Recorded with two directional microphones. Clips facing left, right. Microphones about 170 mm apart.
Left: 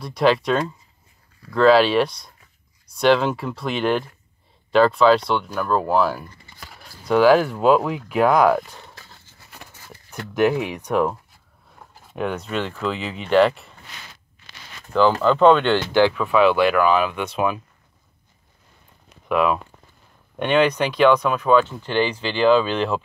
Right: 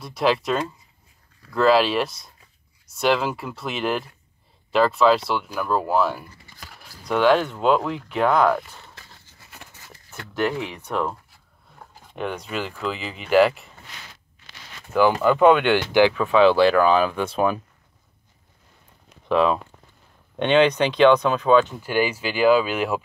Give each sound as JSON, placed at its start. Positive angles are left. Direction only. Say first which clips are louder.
{"t": 0.0, "sound": "speech", "louder": "left 3 dB", "side_deg": 0}
{"t": 10.3, "sound": "speech", "louder": "left 5 dB", "side_deg": 15}
{"t": 15.0, "sound": "speech", "louder": "left 1 dB", "side_deg": -15}
{"t": 16.3, "sound": "speech", "louder": "right 1 dB", "side_deg": -30}
{"t": 19.2, "sound": "speech", "louder": "even", "side_deg": -30}
{"t": 21.8, "sound": "speech", "louder": "left 1 dB", "side_deg": -10}